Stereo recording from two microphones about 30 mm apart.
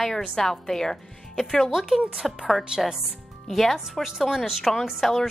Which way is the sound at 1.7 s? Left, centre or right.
Centre.